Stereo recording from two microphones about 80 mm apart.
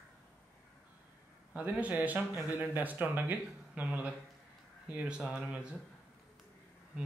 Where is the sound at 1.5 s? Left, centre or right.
Centre.